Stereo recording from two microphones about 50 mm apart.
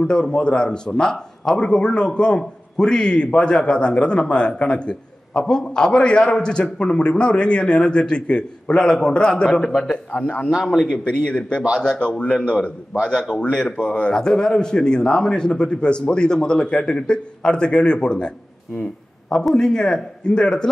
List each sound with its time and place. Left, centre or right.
0.0 s a man's voice: centre
5.3 s a man's voice: centre
13.1 s a man's voice: centre
13.4 s a man's voice: left
19.5 s a man's voice: centre